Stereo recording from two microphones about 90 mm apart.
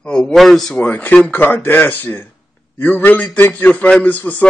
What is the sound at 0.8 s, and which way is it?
A man's voice, 20° left (ahead or behind).